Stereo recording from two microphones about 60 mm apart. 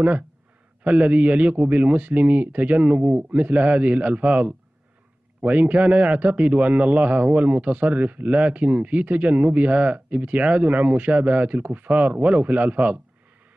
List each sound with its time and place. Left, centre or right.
0.8 s a man's voice: right